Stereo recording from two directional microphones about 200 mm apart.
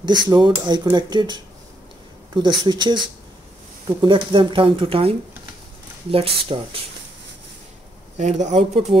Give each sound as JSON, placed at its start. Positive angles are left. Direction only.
{"t": 0.0, "sound": "speech", "side_deg": -20}
{"t": 4.0, "sound": "speech", "side_deg": -25}
{"t": 6.1, "sound": "speech", "side_deg": -25}
{"t": 8.2, "sound": "speech", "side_deg": -35}